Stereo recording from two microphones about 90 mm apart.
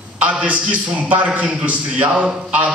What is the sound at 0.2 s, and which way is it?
A man's voice, 15° right (ahead or behind).